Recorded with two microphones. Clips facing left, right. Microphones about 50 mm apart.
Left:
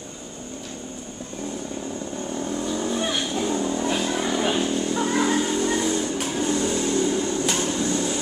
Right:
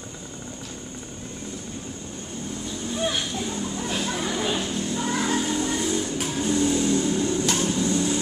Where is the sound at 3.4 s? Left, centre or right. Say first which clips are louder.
Left 6 dB; left.